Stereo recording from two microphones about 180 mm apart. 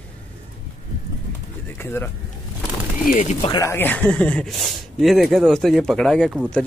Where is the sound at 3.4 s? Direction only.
25° left (ahead or behind).